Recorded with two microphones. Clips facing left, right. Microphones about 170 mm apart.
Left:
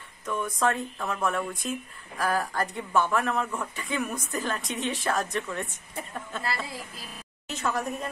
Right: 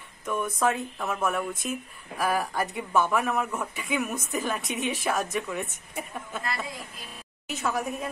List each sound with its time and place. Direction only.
0.3 s speech: 5° right (ahead or behind)
7.4 s a woman's voice: centre (ahead or behind)